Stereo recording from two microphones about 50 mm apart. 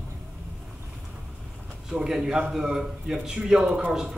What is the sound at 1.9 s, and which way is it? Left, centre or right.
A man's voice, centre.